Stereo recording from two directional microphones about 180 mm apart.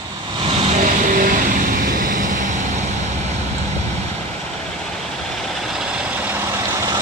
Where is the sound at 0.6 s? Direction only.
45° right (ahead or behind).